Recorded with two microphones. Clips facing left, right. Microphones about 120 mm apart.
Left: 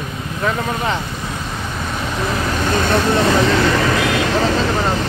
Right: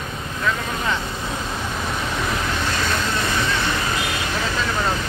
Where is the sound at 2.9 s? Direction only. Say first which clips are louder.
Left 9 dB; 60° left (ahead or behind).